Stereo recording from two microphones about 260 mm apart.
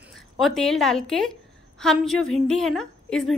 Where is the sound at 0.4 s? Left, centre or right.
Centre.